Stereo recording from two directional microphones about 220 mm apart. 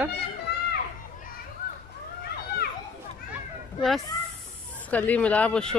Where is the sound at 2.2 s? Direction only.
45° left (ahead or behind).